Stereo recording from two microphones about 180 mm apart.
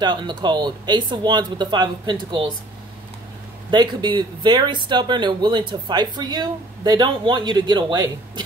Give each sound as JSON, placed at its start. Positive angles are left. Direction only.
{"t": 0.0, "sound": "speech", "side_deg": -25}
{"t": 3.7, "sound": "speech", "side_deg": -25}